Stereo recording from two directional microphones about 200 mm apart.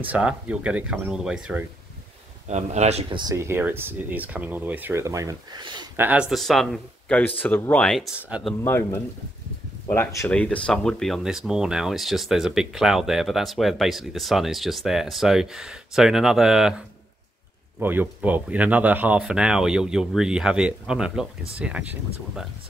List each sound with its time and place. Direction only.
0.0 s speech: 5° right (ahead or behind)
2.4 s speech: 35° right (ahead or behind)
5.9 s speech: 5° right (ahead or behind)
8.6 s speech: 10° left (ahead or behind); by 22.5 s 5° right (ahead or behind)